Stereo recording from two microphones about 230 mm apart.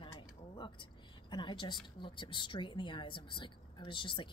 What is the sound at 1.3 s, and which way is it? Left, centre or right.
A woman's voice, centre.